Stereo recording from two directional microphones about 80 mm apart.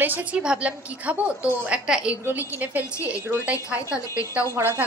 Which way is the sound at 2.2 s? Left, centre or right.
Right.